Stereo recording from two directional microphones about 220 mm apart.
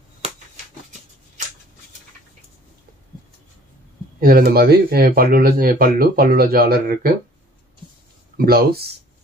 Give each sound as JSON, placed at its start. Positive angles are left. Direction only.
{"t": 4.2, "sound": "speech", "side_deg": -40}
{"t": 8.5, "sound": "speech", "side_deg": -45}